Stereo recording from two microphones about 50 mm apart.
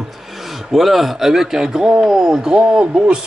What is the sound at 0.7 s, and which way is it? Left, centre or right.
Speech, centre.